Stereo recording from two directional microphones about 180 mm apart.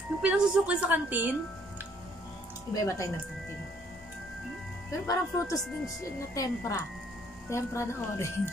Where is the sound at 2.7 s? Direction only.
20° left (ahead or behind).